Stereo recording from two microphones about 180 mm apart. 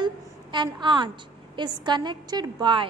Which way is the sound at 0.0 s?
25° right (ahead or behind).